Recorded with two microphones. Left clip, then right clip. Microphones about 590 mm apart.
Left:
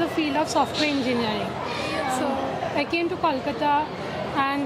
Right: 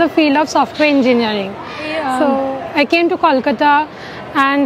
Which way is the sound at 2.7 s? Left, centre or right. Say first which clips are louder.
Right 15 dB; right.